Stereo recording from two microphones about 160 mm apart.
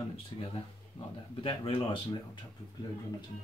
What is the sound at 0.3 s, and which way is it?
Speech, 35° left (ahead or behind).